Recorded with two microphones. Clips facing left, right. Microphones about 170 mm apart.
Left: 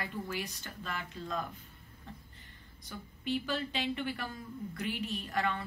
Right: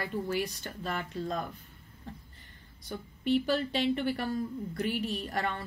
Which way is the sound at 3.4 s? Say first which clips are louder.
Right 6 dB; 40° right (ahead or behind).